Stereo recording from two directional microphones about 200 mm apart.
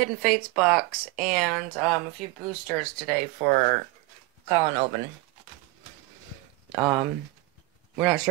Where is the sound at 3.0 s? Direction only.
40° right (ahead or behind).